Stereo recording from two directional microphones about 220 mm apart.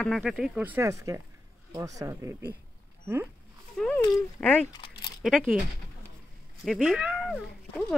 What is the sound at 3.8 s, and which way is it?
Speech, centre (ahead or behind).